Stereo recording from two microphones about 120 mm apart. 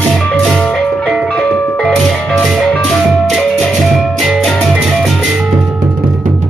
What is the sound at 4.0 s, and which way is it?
Music, centre (ahead or behind).